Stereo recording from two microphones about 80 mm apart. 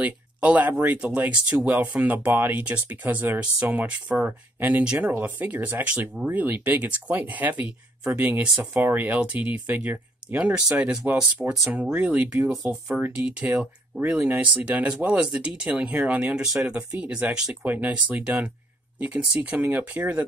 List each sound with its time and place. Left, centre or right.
0.0 s speech: centre
12.4 s speech: centre
13.0 s speech: centre
17.6 s speech: centre